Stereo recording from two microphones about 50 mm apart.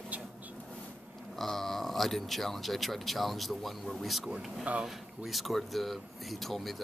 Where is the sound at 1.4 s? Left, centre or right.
Centre.